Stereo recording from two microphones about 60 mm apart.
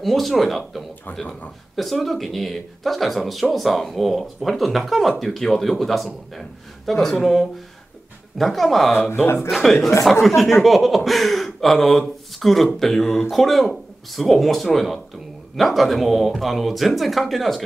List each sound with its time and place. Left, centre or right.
0.0 s speech: centre
9.1 s speech: left
9.5 s speech: centre